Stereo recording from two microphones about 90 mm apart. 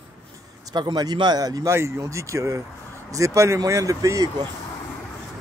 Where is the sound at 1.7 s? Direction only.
30° right (ahead or behind).